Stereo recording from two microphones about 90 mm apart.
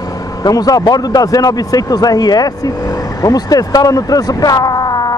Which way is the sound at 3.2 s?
45° left (ahead or behind).